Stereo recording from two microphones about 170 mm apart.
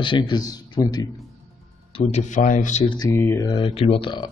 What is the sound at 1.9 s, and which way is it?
Speech, 35° left (ahead or behind).